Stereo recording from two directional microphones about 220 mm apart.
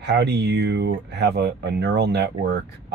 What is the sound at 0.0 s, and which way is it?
Speech, 50° right (ahead or behind).